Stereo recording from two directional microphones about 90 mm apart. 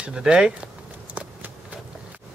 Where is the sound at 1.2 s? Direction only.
15° right (ahead or behind).